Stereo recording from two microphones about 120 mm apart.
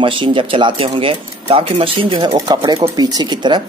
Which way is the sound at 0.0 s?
45° right (ahead or behind).